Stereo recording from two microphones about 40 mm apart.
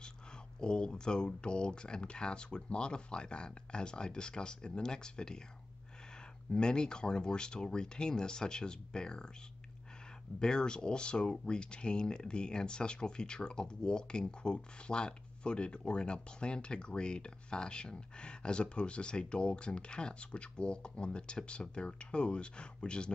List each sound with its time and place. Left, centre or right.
0.6 s speech: left
6.5 s speech: left
10.4 s speech: centre